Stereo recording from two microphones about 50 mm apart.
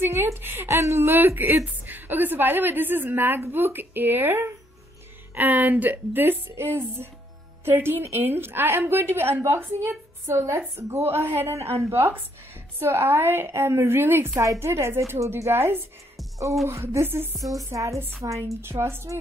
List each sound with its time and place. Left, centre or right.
0.0 s a woman's voice: right
0.7 s a woman's voice: right
5.3 s a woman's voice: right
10.2 s a woman's voice: right
11.5 s a woman's voice: right
15.1 s a woman's voice: right
17.7 s a woman's voice: right
18.4 s a woman's voice: right